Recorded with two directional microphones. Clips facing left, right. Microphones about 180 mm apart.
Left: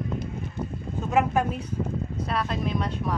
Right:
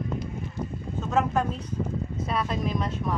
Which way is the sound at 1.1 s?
10° left (ahead or behind).